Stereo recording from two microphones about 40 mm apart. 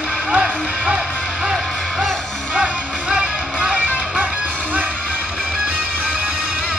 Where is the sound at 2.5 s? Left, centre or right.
Centre.